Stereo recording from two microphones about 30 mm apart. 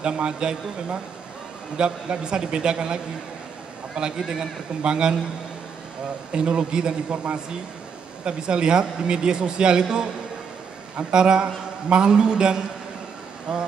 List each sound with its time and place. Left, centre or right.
0.0 s a man's voice: right
1.8 s a man's voice: right
6.3 s a man's voice: right
8.3 s speech: right
11.1 s speech: right